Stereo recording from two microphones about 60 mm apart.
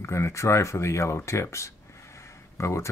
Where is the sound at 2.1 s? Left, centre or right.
Left.